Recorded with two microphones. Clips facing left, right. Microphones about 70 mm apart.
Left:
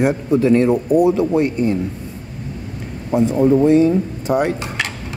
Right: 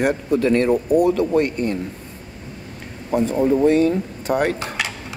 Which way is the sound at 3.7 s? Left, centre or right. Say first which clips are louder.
Left 3 dB; right.